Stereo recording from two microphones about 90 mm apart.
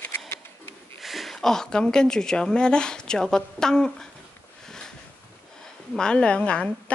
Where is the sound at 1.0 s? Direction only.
Centre (ahead or behind).